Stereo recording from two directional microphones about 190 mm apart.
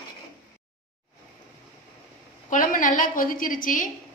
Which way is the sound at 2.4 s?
45° left (ahead or behind).